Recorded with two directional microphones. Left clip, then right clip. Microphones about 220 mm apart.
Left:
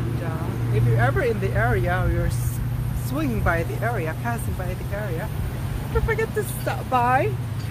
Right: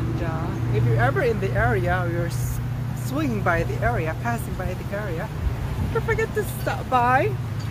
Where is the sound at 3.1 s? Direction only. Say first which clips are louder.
Right 1 dB; 5° right (ahead or behind).